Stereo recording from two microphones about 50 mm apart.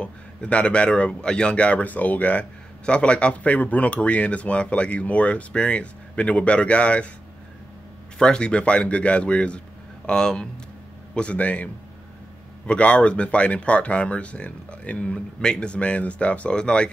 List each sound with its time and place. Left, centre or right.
0.0 s speech: left
8.2 s speech: centre
11.1 s speech: left